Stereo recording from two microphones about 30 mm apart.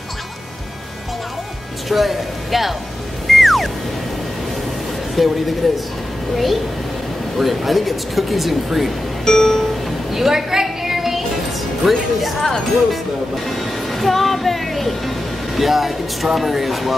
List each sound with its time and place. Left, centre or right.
1.9 s speech: centre
3.3 s music: centre
5.2 s speech: centre
9.2 s music: centre
10.1 s music: centre
11.8 s speech: centre
13.5 s speech: centre